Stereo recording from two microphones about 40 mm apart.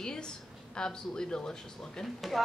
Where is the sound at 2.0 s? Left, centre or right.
Centre.